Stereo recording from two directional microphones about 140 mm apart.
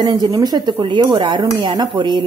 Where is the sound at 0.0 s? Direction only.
30° right (ahead or behind).